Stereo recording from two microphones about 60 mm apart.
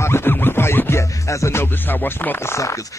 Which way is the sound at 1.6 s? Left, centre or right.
Left.